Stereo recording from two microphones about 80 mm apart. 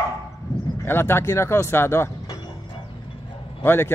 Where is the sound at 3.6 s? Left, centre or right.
Left.